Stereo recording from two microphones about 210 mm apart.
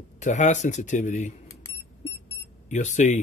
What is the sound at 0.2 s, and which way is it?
Speech, 35° left (ahead or behind).